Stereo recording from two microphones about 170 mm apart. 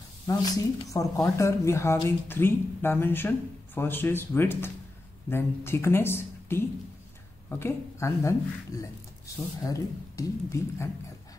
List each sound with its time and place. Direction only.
0.3 s a woman's voice: 20° left (ahead or behind)
9.6 s speech: 20° left (ahead or behind)